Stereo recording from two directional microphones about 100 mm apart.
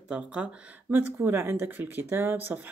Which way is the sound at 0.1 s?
10° right (ahead or behind).